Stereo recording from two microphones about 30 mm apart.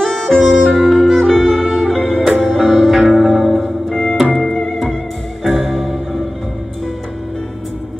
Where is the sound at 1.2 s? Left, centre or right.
Left.